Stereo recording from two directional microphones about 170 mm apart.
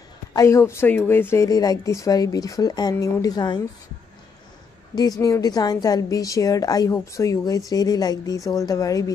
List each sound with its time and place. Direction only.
0.3 s a woman's voice: 20° left (ahead or behind)
4.9 s a woman's voice: 20° left (ahead or behind)